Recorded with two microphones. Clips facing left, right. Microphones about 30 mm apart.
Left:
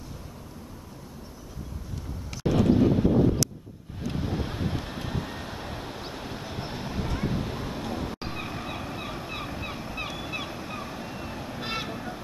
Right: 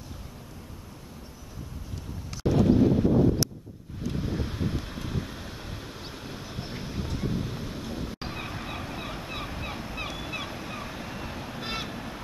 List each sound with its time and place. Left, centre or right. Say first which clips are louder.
2.4 s wind noise: even; left
4.1 s waves: left 1 dB; centre
4.6 s vehicle: left 1 dB; centre
6.7 s a sound: left 2 dB; centre
8.2 s fowl: left 1 dB; centre